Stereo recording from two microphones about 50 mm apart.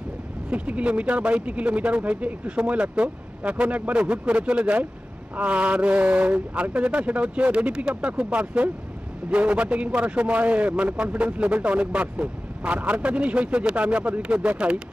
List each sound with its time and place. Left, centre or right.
0.5 s speech: right